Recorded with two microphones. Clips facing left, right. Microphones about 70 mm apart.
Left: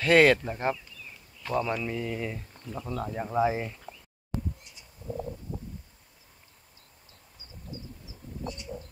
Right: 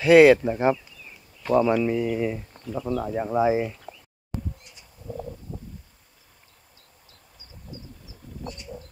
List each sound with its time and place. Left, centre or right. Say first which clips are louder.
0.0 s speech: right 7 dB; centre
2.6 s speech: right 7 dB; centre
7.7 s a sound: even; left